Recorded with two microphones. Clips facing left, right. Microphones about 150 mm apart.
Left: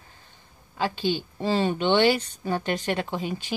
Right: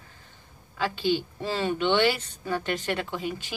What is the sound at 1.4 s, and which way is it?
A woman's voice, 30° left (ahead or behind).